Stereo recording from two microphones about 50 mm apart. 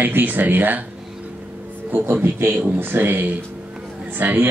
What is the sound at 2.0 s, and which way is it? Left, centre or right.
A man's voice, right.